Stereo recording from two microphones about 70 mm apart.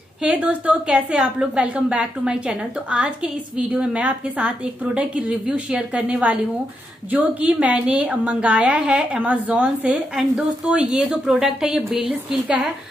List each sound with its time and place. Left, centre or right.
0.2 s a woman's voice: centre
10.1 s a woman's voice: centre